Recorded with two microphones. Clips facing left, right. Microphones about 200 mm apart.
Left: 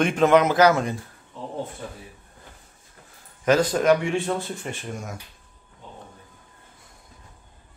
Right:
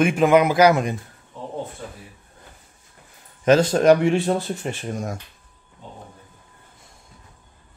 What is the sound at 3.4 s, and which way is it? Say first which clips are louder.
Speech: right 4 dB; 25° right (ahead or behind).